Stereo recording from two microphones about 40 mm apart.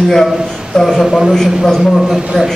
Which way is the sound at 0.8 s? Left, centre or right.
Centre.